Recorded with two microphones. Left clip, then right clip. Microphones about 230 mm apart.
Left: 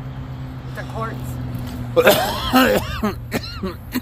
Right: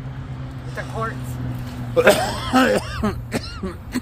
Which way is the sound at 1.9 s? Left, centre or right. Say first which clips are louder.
Left 1 dB; centre.